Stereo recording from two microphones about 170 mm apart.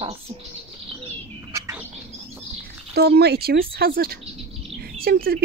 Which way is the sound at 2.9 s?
70° right (ahead or behind).